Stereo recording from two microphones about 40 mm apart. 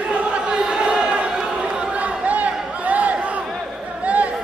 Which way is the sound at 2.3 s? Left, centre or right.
Right.